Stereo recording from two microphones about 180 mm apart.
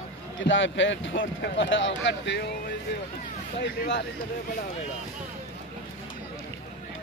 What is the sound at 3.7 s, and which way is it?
Speech, 75° left (ahead or behind).